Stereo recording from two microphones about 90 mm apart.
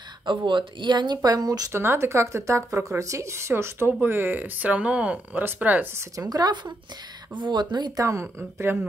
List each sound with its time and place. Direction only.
0.2 s speech: 65° right (ahead or behind); by 1.7 s 45° right (ahead or behind)
1.7 s speech: 30° right (ahead or behind)
5.9 s speech: 45° right (ahead or behind)
8.0 s speech: 35° right (ahead or behind)